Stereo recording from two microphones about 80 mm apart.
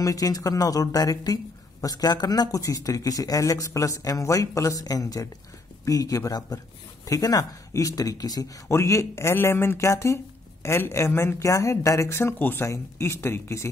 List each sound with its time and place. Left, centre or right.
0.0 s speech: left
8.6 s speech: left
12.6 s speech: left